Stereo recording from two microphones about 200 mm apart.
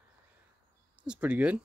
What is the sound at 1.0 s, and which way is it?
Speech, 5° right (ahead or behind).